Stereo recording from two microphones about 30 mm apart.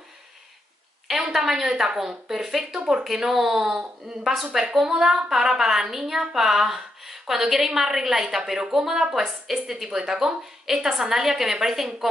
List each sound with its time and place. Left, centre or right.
1.3 s a woman's voice: centre
4.8 s a woman's voice: centre